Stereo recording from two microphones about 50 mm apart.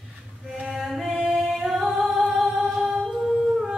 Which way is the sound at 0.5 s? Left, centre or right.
Centre.